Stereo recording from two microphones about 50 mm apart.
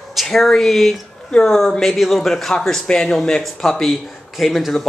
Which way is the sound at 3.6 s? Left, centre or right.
Centre.